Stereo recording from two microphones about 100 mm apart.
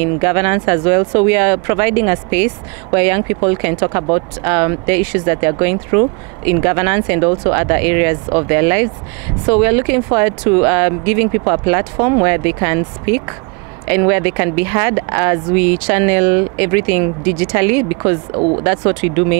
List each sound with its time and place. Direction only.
0.0 s speech: 25° right (ahead or behind)